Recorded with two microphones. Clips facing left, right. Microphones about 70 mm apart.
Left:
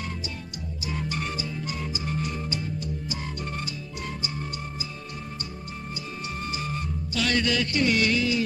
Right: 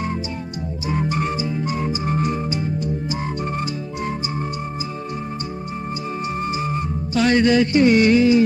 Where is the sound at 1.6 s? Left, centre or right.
Right.